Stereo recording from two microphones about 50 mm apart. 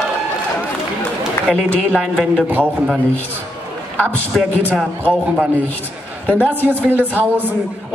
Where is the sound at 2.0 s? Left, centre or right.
Centre.